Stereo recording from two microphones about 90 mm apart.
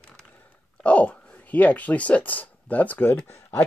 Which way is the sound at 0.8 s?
15° left (ahead or behind).